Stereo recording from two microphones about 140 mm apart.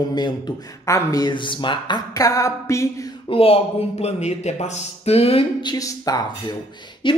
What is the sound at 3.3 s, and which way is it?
Speech, 40° left (ahead or behind).